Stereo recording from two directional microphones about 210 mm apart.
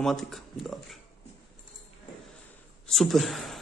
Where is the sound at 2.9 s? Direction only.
Centre (ahead or behind).